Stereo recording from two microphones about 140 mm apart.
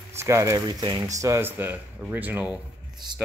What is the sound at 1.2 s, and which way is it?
Speech, 20° right (ahead or behind).